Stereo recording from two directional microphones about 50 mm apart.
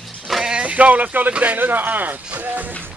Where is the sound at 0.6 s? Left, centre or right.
Right.